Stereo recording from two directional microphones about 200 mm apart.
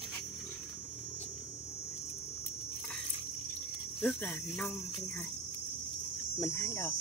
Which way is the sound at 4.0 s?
5° left (ahead or behind).